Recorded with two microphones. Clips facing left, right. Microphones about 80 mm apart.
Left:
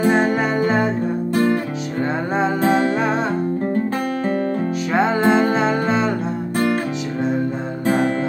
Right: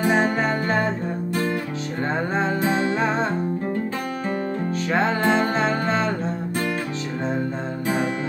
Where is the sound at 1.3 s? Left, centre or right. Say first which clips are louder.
Left 7 dB; left.